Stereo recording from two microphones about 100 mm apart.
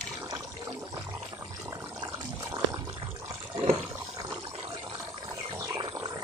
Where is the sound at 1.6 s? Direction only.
40° right (ahead or behind).